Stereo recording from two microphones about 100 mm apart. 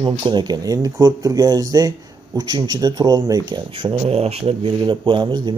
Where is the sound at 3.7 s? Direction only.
60° right (ahead or behind); by 4.7 s 85° right.